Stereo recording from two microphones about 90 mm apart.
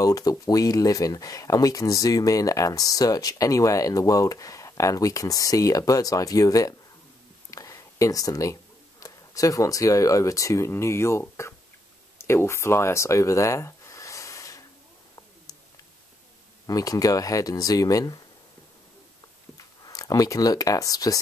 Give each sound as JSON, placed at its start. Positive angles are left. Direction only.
{"t": 0.0, "sound": "speech", "side_deg": 40}
{"t": 7.5, "sound": "a sound", "side_deg": 35}
{"t": 9.0, "sound": "speech", "side_deg": 40}
{"t": 16.6, "sound": "speech", "side_deg": 40}
{"t": 19.5, "sound": "speech", "side_deg": 40}